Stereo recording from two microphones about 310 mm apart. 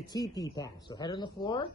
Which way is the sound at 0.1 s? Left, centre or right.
Centre.